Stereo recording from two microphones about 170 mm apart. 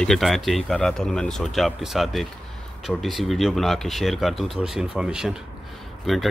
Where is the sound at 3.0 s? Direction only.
Centre (ahead or behind).